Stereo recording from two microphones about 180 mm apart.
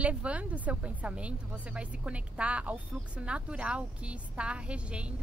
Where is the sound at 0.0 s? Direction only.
5° right (ahead or behind).